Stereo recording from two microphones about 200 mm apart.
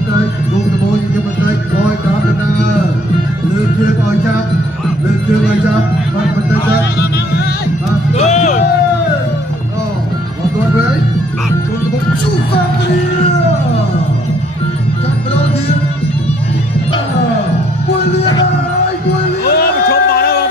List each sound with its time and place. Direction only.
8.1 s music: 35° left (ahead or behind)
19.4 s run: 50° left (ahead or behind)